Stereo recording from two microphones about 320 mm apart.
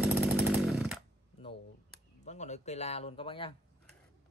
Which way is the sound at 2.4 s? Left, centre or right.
Left.